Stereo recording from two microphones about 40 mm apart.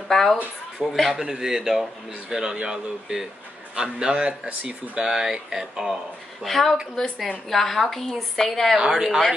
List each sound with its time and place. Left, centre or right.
0.1 s a woman's voice: centre
1.1 s speech: centre; by 5.0 s right
5.0 s speech: centre
6.4 s a woman's voice: centre
8.7 s speech: centre